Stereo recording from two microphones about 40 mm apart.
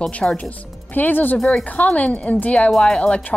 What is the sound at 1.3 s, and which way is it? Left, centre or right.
Speech, centre.